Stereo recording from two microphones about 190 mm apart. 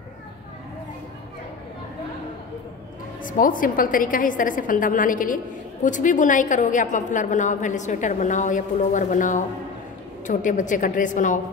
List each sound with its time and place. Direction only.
3.2 s a woman's voice: 45° left (ahead or behind)